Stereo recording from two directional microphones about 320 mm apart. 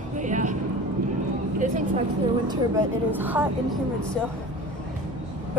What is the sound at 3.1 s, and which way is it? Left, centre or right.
Speech, centre.